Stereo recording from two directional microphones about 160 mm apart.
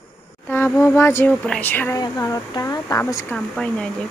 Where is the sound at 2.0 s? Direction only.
20° left (ahead or behind).